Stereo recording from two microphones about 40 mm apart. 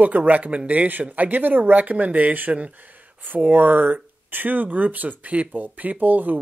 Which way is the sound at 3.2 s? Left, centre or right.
Right.